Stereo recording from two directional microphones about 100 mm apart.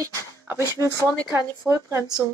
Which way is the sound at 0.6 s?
30° left (ahead or behind).